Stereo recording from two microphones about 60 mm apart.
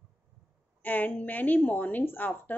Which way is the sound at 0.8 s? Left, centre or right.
Left.